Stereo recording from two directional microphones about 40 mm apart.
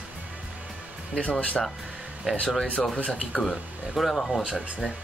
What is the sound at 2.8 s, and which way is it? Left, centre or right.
Speech, left.